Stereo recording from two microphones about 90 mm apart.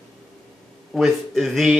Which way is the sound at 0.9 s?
Centre (ahead or behind).